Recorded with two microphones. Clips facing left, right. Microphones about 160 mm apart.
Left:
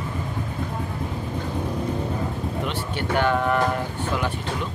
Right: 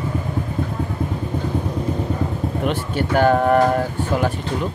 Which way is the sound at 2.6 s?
40° right (ahead or behind).